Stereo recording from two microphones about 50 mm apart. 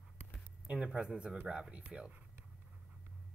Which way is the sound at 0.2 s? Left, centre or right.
Right.